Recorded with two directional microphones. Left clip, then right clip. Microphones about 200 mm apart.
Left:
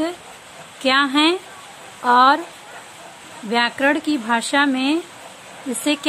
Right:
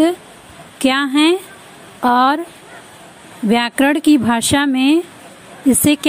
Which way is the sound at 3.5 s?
35° right (ahead or behind).